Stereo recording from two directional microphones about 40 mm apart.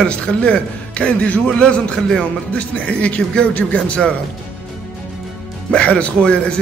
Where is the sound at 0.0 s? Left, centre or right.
Left.